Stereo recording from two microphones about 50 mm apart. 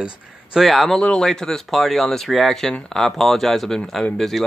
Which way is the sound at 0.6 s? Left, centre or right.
Centre.